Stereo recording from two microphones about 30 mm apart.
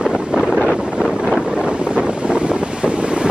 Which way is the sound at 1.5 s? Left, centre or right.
Right.